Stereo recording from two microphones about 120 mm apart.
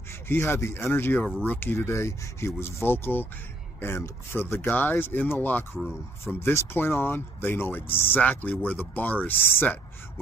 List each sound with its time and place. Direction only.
0.3 s speech: 20° left (ahead or behind)